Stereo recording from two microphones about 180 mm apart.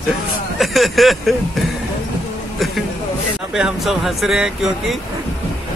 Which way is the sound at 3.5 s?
5° right (ahead or behind).